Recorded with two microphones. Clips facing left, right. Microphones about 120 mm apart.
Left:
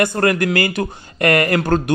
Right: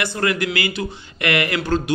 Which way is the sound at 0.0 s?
45° left (ahead or behind).